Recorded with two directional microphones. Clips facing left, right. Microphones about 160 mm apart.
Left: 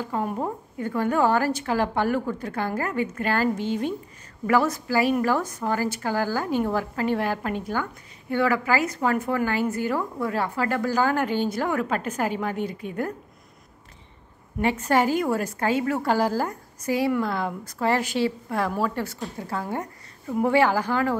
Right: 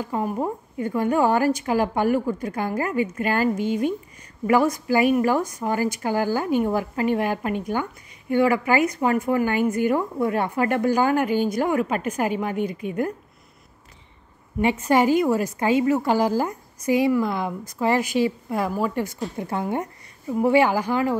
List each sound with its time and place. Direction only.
0.2 s a woman's voice: centre (ahead or behind)
0.7 s a woman's voice: 15° right (ahead or behind)
14.6 s a woman's voice: 15° right (ahead or behind)